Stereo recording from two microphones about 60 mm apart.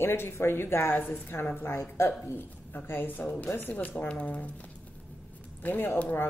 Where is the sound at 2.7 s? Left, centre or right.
Left.